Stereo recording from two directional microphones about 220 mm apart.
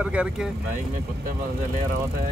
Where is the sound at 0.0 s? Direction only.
5° right (ahead or behind).